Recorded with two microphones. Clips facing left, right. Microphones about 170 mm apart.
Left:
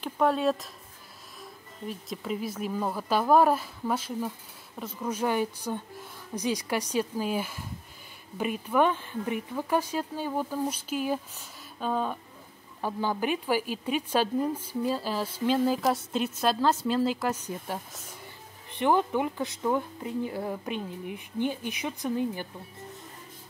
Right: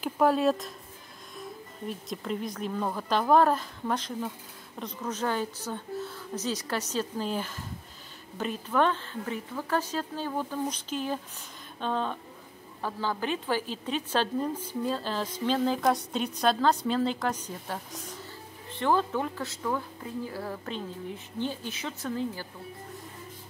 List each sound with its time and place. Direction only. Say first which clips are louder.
0.0 s a woman's voice: right 1 dB; centre (ahead or behind); by 22.5 s 15° left (ahead or behind)